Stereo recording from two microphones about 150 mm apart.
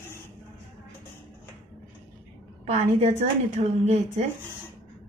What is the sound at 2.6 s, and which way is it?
A woman's voice, 50° right (ahead or behind).